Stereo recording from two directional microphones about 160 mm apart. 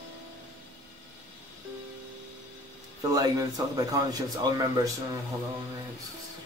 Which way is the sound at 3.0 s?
20° right (ahead or behind).